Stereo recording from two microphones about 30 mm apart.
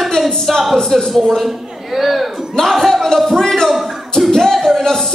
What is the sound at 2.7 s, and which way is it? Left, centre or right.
A man's voice, centre.